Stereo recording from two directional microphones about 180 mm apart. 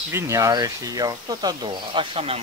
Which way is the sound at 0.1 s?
15° right (ahead or behind).